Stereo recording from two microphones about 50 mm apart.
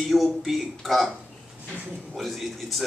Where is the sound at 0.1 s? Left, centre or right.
Centre.